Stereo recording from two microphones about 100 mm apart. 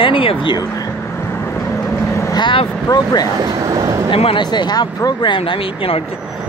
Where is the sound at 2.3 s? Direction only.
50° left (ahead or behind).